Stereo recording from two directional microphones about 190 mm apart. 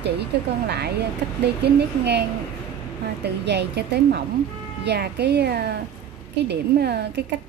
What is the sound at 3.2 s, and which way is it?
A woman's voice, 60° right (ahead or behind).